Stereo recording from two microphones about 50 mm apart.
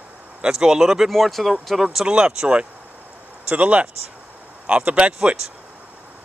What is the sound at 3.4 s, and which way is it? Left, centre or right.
Speech, right.